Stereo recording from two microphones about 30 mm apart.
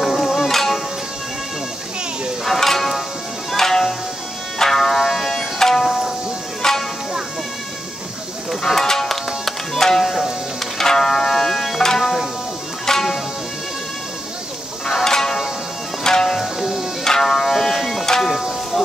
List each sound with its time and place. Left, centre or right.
0.0 s music: centre
2.4 s music: centre
5.9 s music: centre
6.6 s music: centre
8.6 s music: centre
15.0 s music: centre
16.3 s music: centre
17.0 s music: centre